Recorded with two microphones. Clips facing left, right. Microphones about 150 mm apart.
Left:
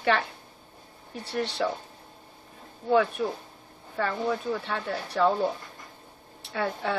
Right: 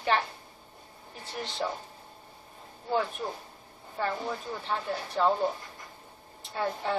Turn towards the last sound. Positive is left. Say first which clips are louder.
# left 2 dB
turn(degrees=75)  # may be behind; listen again after turning